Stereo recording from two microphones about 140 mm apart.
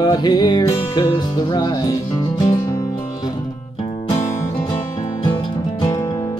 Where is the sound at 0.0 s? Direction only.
30° left (ahead or behind).